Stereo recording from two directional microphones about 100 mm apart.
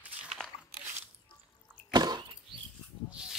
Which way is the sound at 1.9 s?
45° right (ahead or behind).